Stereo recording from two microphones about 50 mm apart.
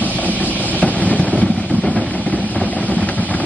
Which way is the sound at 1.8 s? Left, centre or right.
Left.